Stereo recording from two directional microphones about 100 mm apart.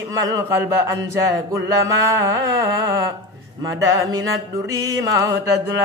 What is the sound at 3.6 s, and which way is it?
Chant, 35° right (ahead or behind).